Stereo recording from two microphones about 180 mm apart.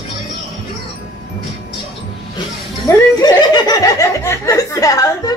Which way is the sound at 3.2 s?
20° left (ahead or behind).